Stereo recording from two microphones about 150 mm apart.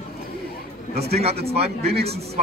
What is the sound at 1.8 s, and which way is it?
Speech, 90° right.